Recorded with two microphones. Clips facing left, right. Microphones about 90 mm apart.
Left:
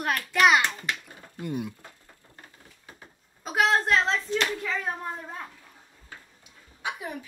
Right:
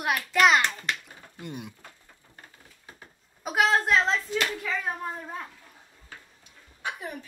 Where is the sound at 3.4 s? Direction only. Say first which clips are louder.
Even; 10° right (ahead or behind).